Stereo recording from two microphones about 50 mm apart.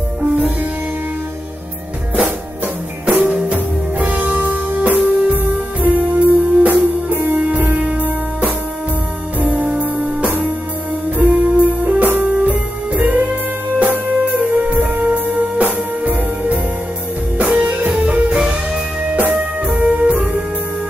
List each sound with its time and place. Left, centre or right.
2.1 s music: right